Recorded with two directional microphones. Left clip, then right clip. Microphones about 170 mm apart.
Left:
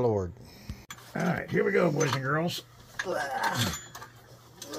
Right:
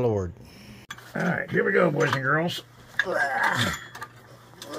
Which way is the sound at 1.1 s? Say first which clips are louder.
Right 4 dB; 40° left (ahead or behind).